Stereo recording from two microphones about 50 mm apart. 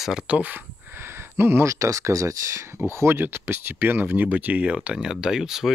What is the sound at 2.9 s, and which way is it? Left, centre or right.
Speech, right.